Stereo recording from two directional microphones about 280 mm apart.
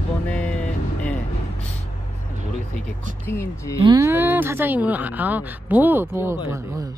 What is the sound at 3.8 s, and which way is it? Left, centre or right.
Speech, centre.